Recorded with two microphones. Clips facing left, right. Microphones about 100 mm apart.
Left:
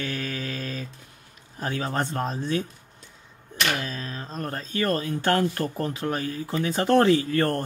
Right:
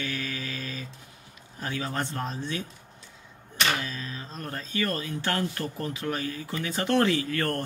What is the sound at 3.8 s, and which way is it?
Speech, 45° left (ahead or behind).